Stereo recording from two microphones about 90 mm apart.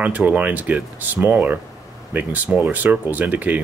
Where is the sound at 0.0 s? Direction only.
15° right (ahead or behind).